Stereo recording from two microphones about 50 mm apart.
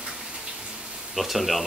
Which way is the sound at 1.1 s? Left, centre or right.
Centre.